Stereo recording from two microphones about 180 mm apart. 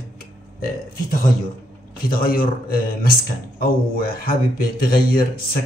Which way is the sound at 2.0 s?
55° left (ahead or behind).